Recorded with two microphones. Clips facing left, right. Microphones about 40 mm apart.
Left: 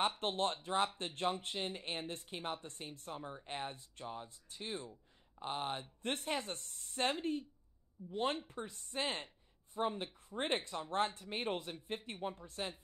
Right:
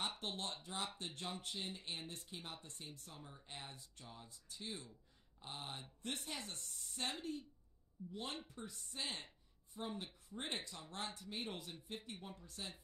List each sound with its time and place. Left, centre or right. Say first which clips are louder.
0.2 s speech: left 9 dB; left